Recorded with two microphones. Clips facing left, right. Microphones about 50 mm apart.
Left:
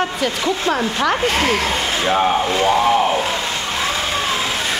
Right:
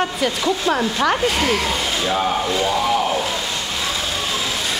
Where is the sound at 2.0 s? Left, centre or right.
Left.